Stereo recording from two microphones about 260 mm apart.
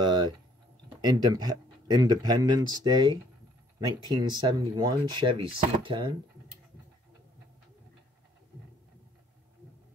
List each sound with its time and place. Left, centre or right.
0.0 s typing: centre
0.8 s speech: centre